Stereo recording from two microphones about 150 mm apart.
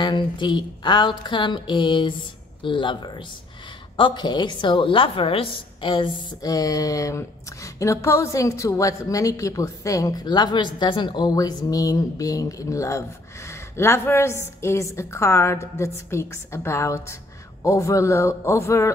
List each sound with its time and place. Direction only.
0.0 s a woman's voice: 30° left (ahead or behind)